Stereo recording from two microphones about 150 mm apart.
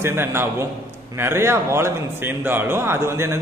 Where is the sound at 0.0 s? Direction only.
15° right (ahead or behind).